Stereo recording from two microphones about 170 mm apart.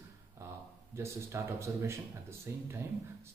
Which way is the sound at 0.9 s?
15° right (ahead or behind).